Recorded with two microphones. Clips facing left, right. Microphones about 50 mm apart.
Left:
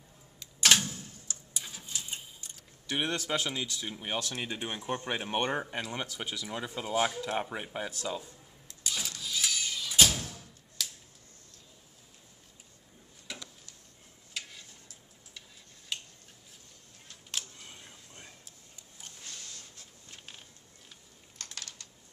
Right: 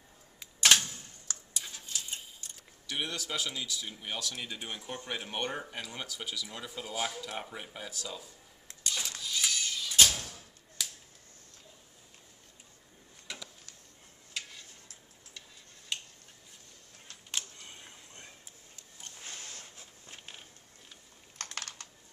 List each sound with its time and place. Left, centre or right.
0.4 s typewriter: centre
1.6 s a sound: centre
1.9 s clock: centre
2.9 s speech: left
8.8 s a sound: centre
10.8 s finger snapping: centre
13.3 s a sound: centre
14.3 s tick-tock: centre
15.9 s finger snapping: centre
17.3 s camera: centre
19.1 s a sound: right
21.5 s typing: right